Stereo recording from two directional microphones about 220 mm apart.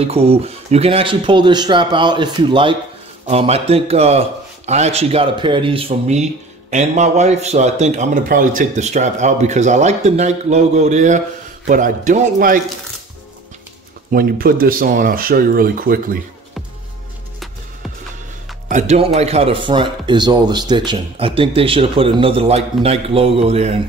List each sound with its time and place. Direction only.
0.0 s speech: 25° right (ahead or behind)
14.1 s speech: 40° right (ahead or behind)
18.7 s speech: 30° right (ahead or behind)